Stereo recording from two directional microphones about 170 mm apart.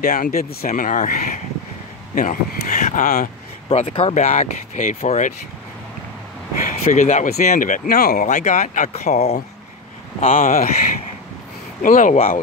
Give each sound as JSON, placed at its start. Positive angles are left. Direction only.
{"t": 0.0, "sound": "speech", "side_deg": 50}
{"t": 3.6, "sound": "speech", "side_deg": 35}
{"t": 6.6, "sound": "speech", "side_deg": 45}
{"t": 8.3, "sound": "speech", "side_deg": 45}
{"t": 10.3, "sound": "speech", "side_deg": 55}
{"t": 11.8, "sound": "speech", "side_deg": 50}